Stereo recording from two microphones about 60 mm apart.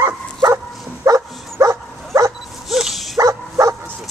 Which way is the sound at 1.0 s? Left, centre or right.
Right.